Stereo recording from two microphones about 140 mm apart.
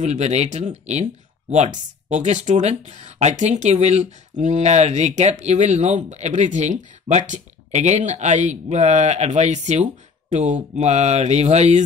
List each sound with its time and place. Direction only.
0.0 s speech: 55° right (ahead or behind)
2.0 s speech: 55° right (ahead or behind)